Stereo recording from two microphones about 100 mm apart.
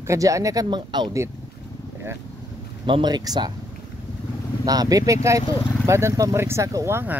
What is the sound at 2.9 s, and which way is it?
Speech, 50° right (ahead or behind).